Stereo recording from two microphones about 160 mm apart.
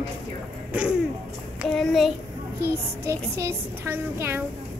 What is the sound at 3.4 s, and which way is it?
A woman's voice, 15° right (ahead or behind).